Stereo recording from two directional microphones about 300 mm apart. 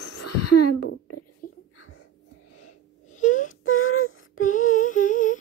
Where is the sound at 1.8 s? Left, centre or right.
Left.